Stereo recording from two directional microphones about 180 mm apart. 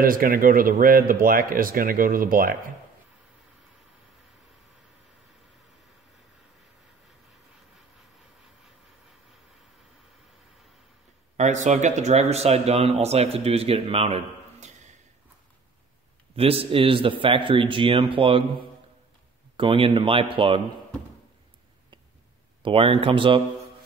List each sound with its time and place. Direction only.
0.0 s speech: 50° right (ahead or behind)
11.3 s speech: 40° right (ahead or behind)
16.3 s speech: 30° right (ahead or behind)
19.5 s speech: 30° right (ahead or behind)
22.6 s speech: 30° right (ahead or behind)